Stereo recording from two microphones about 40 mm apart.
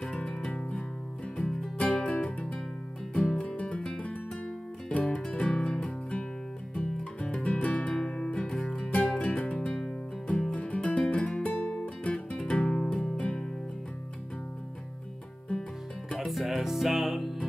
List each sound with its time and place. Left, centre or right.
0.0 s music: left
0.6 s music: left
1.4 s music: centre
1.8 s music: left
3.4 s music: left
5.6 s music: centre
7.9 s music: left
10.6 s music: left
12.4 s music: centre
16.3 s music: centre